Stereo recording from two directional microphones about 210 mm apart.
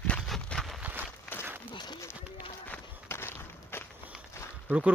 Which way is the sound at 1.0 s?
10° left (ahead or behind).